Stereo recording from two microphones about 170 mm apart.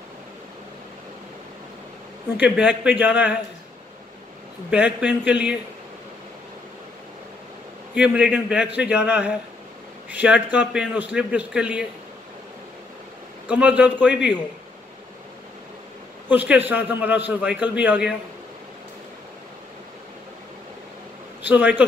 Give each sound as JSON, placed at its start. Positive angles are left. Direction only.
{"t": 2.4, "sound": "a man's voice", "side_deg": -5}
{"t": 4.6, "sound": "a man's voice", "side_deg": -10}
{"t": 7.9, "sound": "a man's voice", "side_deg": -5}
{"t": 13.5, "sound": "a man's voice", "side_deg": -5}
{"t": 16.3, "sound": "a man's voice", "side_deg": -10}
{"t": 21.5, "sound": "a man's voice", "side_deg": -10}